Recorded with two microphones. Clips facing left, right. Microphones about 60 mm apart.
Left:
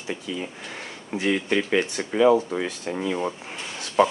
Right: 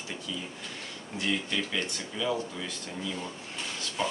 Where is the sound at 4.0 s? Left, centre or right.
Left.